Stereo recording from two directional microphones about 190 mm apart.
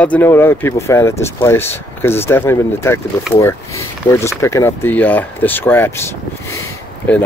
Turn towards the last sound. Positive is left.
turn(degrees=10)  # may be behind; listen again after turning